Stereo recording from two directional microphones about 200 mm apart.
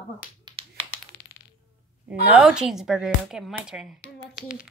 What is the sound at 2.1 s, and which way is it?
Speech, 5° right (ahead or behind).